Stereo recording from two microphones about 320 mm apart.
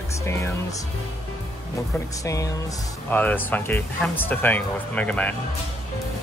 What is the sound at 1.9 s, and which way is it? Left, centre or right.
Speech, centre.